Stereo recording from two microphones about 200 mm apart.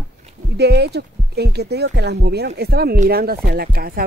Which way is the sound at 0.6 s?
55° right (ahead or behind).